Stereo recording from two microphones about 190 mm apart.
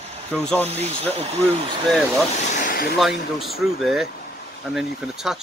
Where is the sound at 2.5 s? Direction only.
50° left (ahead or behind).